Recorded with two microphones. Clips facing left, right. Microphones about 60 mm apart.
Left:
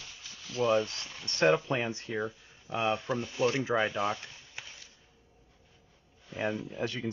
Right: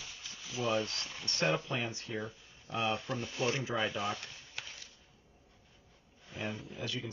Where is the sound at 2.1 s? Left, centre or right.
Centre.